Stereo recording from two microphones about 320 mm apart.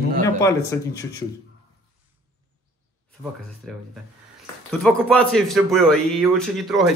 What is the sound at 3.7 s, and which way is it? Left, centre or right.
A man's voice, centre.